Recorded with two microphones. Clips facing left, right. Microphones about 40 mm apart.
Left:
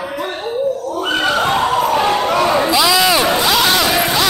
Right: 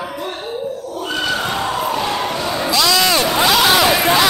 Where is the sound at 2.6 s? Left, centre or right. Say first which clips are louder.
Left 2 dB; centre.